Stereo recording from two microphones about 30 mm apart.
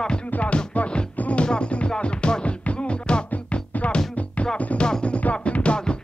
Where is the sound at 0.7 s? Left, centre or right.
Left.